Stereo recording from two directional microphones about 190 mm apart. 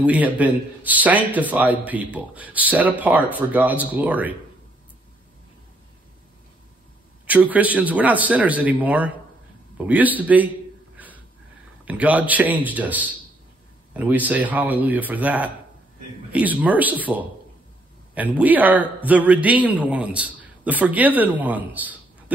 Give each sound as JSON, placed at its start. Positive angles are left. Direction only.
{"t": 0.0, "sound": "a man's voice", "side_deg": -5}
{"t": 7.2, "sound": "a man's voice", "side_deg": -10}
{"t": 11.8, "sound": "a man's voice", "side_deg": -5}